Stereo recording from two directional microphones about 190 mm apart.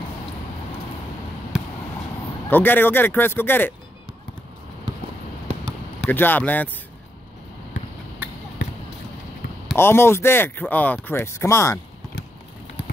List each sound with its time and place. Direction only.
2.5 s speech: 10° left (ahead or behind)
5.9 s speech: 10° left (ahead or behind)
9.8 s speech: 10° left (ahead or behind)